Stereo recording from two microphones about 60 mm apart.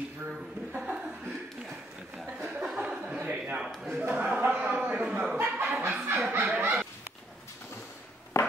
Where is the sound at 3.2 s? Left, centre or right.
Right.